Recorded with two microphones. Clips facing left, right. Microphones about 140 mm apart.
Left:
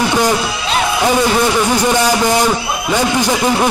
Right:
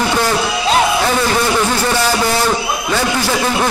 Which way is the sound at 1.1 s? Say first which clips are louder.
Left 2 dB; 15° left (ahead or behind).